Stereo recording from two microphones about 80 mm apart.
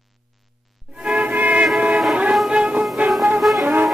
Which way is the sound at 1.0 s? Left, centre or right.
Centre.